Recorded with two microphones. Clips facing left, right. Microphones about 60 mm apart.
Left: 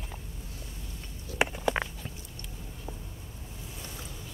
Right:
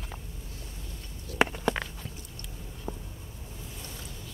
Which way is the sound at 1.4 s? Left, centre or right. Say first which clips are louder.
Right 2 dB; centre.